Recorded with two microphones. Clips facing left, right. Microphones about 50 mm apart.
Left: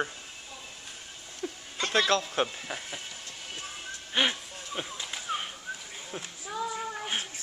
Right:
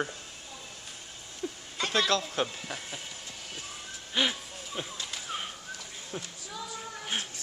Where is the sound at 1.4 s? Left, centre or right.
Centre.